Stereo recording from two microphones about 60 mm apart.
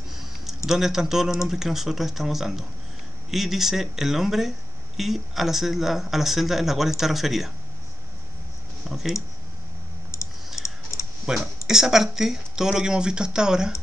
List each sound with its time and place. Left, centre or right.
0.1 s a sound: centre
0.7 s speech: centre
8.8 s speech: centre
10.1 s clicking: left
10.6 s computer keyboard: left
11.2 s speech: centre